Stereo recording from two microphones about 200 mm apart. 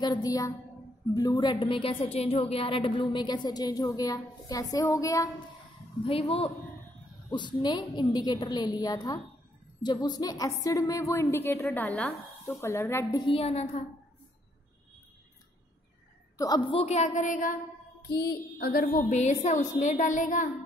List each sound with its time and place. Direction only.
0.0 s a woman's voice: 20° left (ahead or behind)
6.0 s a woman's voice: 30° left (ahead or behind); by 13.2 s 15° left (ahead or behind)
13.2 s a woman's voice: 30° left (ahead or behind)
16.3 s a woman's voice: 20° left (ahead or behind); by 20.4 s 40° left (ahead or behind)